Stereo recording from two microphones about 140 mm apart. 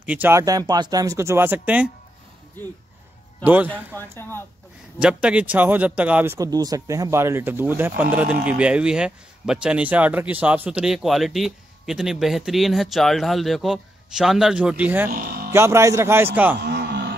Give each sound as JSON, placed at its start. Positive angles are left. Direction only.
{"t": 0.0, "sound": "speech", "side_deg": -10}
{"t": 0.4, "sound": "speech", "side_deg": -25}
{"t": 3.4, "sound": "a man's voice", "side_deg": -10}
{"t": 4.1, "sound": "speech", "side_deg": 15}
{"t": 5.0, "sound": "a man's voice", "side_deg": -10}
{"t": 15.0, "sound": "speech", "side_deg": -90}
{"t": 15.5, "sound": "speech", "side_deg": -20}